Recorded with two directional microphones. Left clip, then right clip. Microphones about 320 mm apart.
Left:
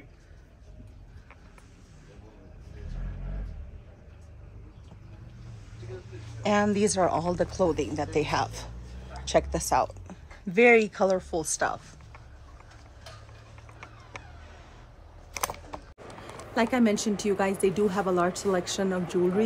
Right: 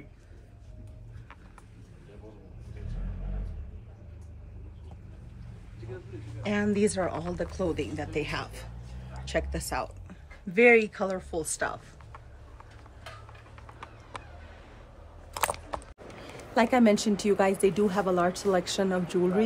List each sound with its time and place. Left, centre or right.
6.4 s speech: centre
9.1 s a sound: centre
9.5 s speech: centre
16.5 s a woman's voice: centre